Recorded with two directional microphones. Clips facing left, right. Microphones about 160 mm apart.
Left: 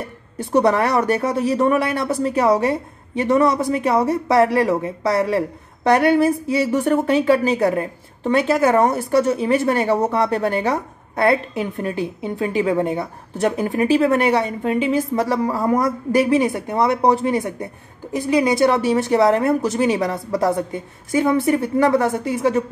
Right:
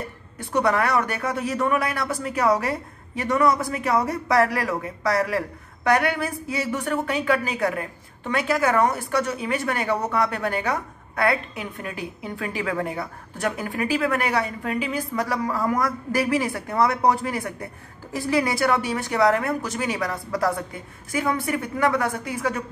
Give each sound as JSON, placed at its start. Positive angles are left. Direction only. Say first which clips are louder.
{"t": 0.4, "sound": "a woman's voice", "louder": "left 5 dB", "side_deg": 30}